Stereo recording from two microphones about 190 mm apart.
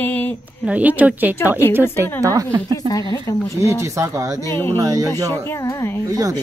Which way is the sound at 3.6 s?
15° right (ahead or behind).